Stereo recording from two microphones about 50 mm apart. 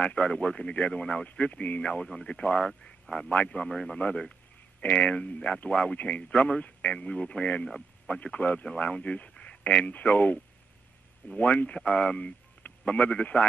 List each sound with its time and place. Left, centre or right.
0.0 s speech: left
3.3 s speech: left